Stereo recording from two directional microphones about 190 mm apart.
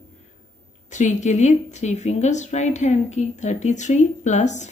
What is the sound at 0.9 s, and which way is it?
Speech, 40° left (ahead or behind).